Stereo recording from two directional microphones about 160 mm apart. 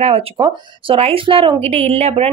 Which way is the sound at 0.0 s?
35° right (ahead or behind).